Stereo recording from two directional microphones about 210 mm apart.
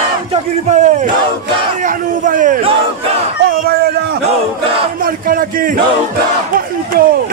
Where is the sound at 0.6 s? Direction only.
35° right (ahead or behind).